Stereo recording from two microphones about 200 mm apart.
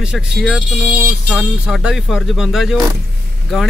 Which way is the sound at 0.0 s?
5° right (ahead or behind).